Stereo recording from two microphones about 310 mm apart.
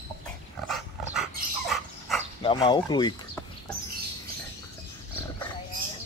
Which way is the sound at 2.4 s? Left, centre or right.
Centre.